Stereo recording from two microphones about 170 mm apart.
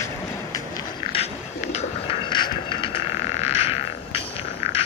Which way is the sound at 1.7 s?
40° left (ahead or behind).